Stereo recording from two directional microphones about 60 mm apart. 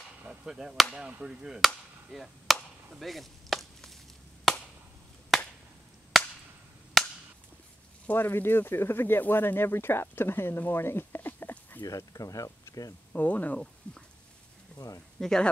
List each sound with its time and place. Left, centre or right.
0.2 s a sound: right
0.5 s speech: centre
2.0 s chop: centre
6.1 s chop: centre
8.1 s speech: left
11.8 s speech: left
13.1 s speech: left
15.1 s speech: centre